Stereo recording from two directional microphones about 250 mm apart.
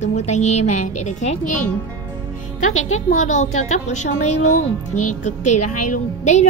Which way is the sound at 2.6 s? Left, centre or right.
Left.